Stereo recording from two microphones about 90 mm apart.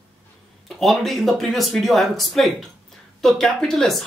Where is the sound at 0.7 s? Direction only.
Centre (ahead or behind).